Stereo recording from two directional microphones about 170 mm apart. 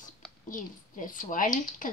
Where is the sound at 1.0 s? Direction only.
50° left (ahead or behind).